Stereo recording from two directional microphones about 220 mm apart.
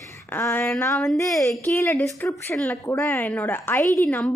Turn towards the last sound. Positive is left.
turn(degrees=10)  # may be behind; listen again after turning